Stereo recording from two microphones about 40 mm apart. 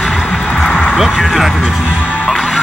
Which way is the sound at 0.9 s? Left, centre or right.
Centre.